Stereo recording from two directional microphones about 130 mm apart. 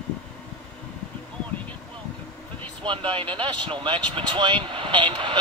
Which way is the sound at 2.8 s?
40° right (ahead or behind).